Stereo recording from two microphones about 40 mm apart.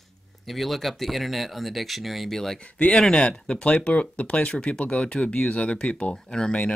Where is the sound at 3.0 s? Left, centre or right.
Left.